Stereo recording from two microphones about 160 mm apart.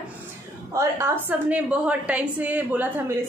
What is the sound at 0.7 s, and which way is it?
Speech, 20° right (ahead or behind).